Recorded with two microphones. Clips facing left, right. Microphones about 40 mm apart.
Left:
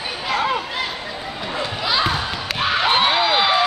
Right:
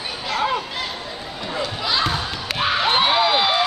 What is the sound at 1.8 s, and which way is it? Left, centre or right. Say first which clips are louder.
Basketball bounce: left 2 dB; centre.